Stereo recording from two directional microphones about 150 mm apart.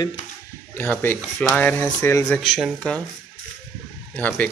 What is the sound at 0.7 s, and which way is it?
Speech, 10° left (ahead or behind).